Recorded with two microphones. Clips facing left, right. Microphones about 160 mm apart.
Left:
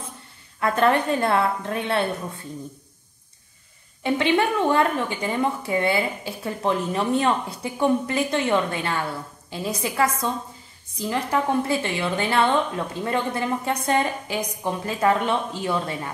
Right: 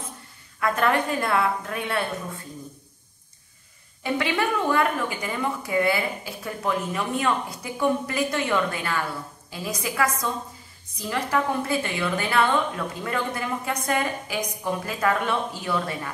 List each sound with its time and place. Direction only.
0.6 s a woman's voice: 30° left (ahead or behind)
4.0 s a woman's voice: 25° left (ahead or behind)